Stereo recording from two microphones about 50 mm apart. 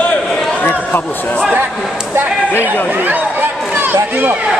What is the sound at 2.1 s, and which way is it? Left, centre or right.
Speech, right.